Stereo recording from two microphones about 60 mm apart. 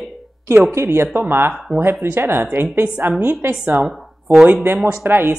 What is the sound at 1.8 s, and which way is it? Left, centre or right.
Speech, right.